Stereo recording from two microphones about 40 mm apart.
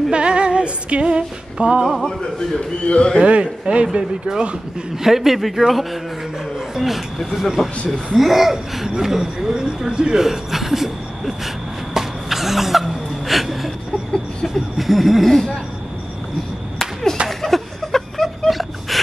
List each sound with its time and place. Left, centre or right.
0.1 s female singing: right
2.3 s a man's voice: left
3.2 s speech: right
5.0 s speech: centre
6.7 s laughter: centre
9.0 s speech: centre
10.2 s a sound: centre
17.3 s a sound: centre